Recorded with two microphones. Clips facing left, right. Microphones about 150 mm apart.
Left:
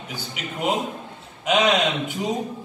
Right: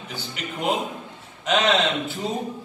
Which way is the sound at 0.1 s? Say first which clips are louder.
Even; 5° left (ahead or behind).